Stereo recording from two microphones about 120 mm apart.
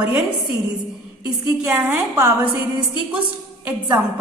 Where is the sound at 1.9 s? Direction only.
15° right (ahead or behind).